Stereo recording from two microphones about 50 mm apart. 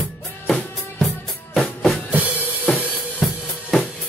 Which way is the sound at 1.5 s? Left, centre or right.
Centre.